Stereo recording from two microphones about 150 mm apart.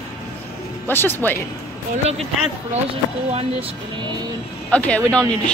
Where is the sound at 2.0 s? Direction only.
45° right (ahead or behind).